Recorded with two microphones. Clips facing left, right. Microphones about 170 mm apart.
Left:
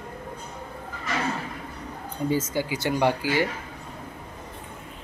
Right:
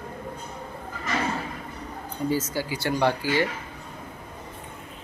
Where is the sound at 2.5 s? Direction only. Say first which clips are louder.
Left 1 dB; 20° left (ahead or behind).